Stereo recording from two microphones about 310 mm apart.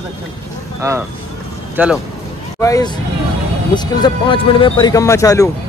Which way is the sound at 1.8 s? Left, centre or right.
Centre.